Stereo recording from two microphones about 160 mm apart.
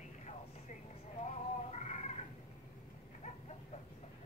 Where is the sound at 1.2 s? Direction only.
45° left (ahead or behind).